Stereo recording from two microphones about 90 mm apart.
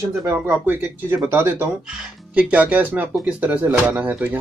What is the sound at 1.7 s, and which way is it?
Speech, 5° right (ahead or behind).